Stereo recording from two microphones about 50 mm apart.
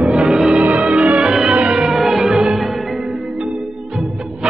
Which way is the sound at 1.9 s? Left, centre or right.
Centre.